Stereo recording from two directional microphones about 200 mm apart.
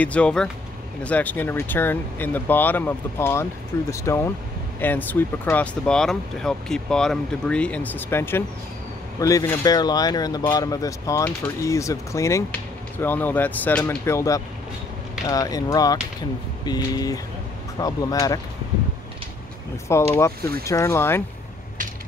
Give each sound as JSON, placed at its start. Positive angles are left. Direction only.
{"t": 0.0, "sound": "speech", "side_deg": 5}
{"t": 19.9, "sound": "speech", "side_deg": 15}